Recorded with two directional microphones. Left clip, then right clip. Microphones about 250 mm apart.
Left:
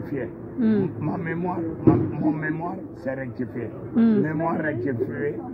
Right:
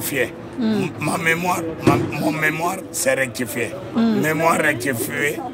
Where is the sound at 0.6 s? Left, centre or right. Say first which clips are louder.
Right 1 dB; centre.